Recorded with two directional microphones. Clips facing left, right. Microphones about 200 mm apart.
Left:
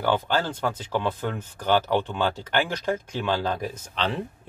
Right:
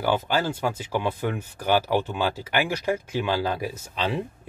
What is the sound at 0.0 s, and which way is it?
Speech, 10° right (ahead or behind).